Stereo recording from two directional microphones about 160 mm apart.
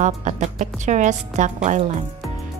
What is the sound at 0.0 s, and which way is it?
A woman's voice, 50° right (ahead or behind).